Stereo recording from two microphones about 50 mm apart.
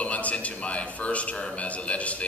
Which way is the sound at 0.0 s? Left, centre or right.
Left.